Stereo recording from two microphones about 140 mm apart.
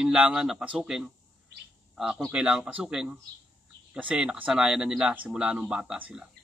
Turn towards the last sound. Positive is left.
turn(degrees=-5)  # may be behind; listen again after turning